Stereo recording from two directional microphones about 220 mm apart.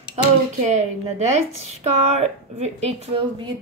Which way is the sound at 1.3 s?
30° right (ahead or behind).